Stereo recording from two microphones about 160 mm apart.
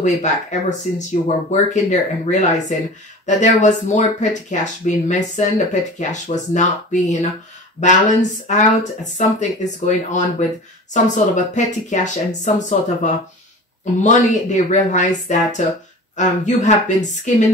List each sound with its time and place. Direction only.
0.0 s speech: 50° left (ahead or behind)